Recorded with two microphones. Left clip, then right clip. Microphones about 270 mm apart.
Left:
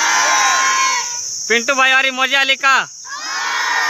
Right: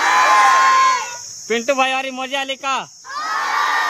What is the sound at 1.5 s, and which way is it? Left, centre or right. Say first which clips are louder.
Speech: left 4 dB; centre.